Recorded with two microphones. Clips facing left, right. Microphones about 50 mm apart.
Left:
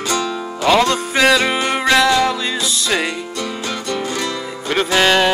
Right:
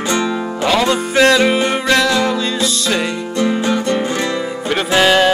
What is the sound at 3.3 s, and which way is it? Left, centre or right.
Music, right.